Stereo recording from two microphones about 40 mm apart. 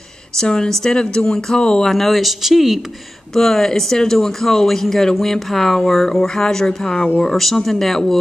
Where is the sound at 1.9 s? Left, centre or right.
Centre.